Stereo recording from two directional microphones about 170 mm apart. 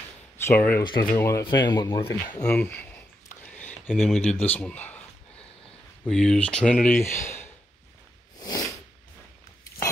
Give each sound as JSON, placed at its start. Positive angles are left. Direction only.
{"t": 0.4, "sound": "speech", "side_deg": 15}
{"t": 2.4, "sound": "a sound", "side_deg": 10}
{"t": 3.9, "sound": "a man's voice", "side_deg": 0}
{"t": 8.4, "sound": "sneeze", "side_deg": 20}